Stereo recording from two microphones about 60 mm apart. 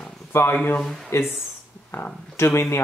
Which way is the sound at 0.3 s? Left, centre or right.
Left.